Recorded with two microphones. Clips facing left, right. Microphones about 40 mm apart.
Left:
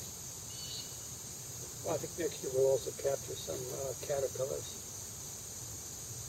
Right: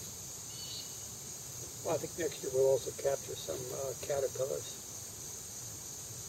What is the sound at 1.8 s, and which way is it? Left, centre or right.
Speech, centre.